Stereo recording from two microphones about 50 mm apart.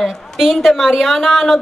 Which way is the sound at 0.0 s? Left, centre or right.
Centre.